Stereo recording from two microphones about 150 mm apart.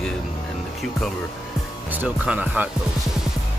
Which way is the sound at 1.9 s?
10° right (ahead or behind).